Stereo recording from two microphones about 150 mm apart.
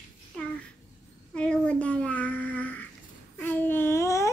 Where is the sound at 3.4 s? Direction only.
15° left (ahead or behind).